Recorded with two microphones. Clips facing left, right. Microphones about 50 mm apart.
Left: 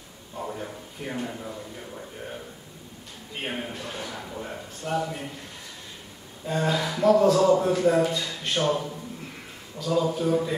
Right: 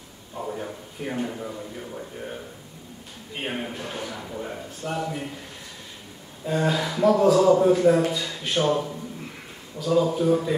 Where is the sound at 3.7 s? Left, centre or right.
Centre.